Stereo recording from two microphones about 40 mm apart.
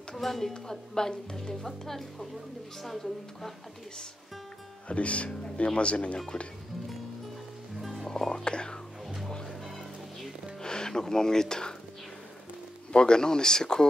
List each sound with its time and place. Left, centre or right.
0.1 s a woman's voice: centre
4.8 s speech: left
7.8 s music: centre
8.1 s music: centre
10.6 s speech: centre
12.9 s speech: left